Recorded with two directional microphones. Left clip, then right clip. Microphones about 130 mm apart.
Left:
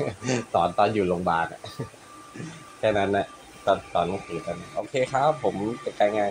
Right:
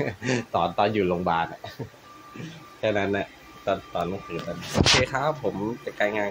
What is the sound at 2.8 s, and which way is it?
Speech, 20° right (ahead or behind).